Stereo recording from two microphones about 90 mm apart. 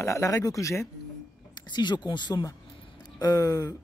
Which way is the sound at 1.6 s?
55° left (ahead or behind).